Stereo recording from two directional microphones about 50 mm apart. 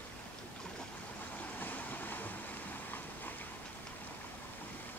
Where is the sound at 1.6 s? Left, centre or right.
Left.